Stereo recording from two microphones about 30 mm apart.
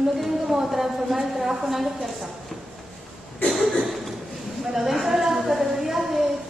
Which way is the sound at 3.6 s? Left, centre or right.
Centre.